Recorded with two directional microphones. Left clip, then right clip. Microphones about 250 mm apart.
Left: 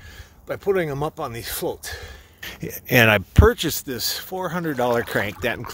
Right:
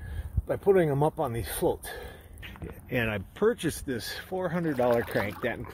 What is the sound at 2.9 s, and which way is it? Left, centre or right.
Speech, left.